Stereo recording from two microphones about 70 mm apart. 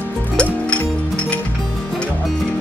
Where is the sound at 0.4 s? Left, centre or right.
Centre.